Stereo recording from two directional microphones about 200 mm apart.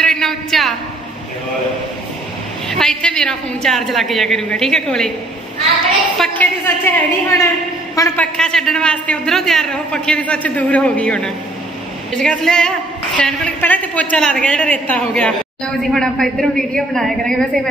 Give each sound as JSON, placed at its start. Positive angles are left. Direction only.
{"t": 0.0, "sound": "a sound", "side_deg": 0}
{"t": 2.7, "sound": "a woman's voice", "side_deg": 0}
{"t": 6.1, "sound": "a woman's voice", "side_deg": 5}
{"t": 8.4, "sound": "a woman's voice", "side_deg": 5}